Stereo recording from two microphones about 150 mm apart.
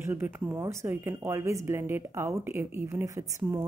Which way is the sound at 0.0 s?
15° right (ahead or behind).